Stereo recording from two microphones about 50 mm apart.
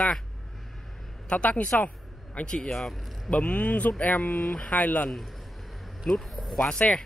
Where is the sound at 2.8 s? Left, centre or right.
Centre.